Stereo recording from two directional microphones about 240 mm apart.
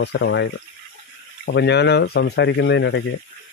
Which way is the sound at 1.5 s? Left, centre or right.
Left.